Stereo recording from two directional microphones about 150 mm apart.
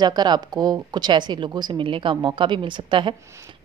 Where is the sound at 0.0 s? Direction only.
30° right (ahead or behind).